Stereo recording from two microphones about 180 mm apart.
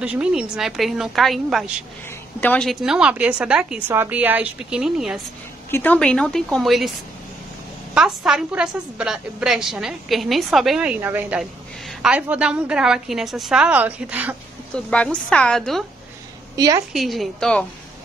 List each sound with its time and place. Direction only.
0.0 s a woman's voice: 5° right (ahead or behind)
5.7 s a woman's voice: 10° left (ahead or behind)
7.9 s a woman's voice: 5° right (ahead or behind)
14.9 s a woman's voice: 5° left (ahead or behind)
16.5 s a woman's voice: 20° right (ahead or behind)
16.9 s a woman's voice: centre (ahead or behind)